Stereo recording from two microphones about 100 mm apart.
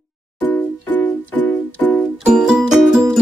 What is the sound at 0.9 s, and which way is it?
Music, 15° left (ahead or behind).